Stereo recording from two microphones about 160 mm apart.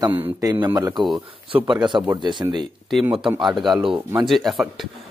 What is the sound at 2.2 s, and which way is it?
Speech, 30° right (ahead or behind).